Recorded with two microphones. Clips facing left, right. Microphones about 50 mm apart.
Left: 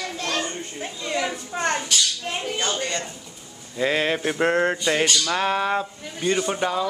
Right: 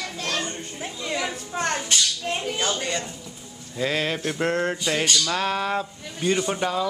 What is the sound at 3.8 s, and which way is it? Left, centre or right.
Speech, centre.